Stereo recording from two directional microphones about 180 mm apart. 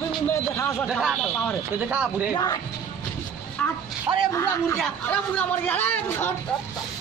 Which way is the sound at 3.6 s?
10° left (ahead or behind).